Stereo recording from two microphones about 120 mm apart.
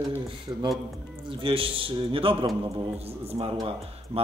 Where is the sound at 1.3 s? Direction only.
45° right (ahead or behind).